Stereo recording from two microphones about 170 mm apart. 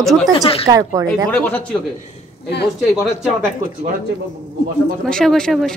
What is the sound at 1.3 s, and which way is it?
Speech, 10° left (ahead or behind).